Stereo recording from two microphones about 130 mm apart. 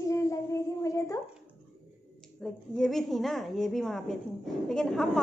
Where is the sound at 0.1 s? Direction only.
25° left (ahead or behind).